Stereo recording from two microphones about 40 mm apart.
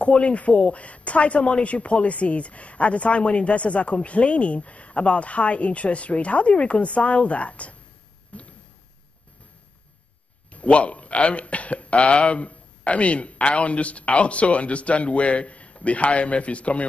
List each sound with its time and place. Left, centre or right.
0.0 s a woman's voice: left
8.3 s a sound: left
10.5 s a man's voice: left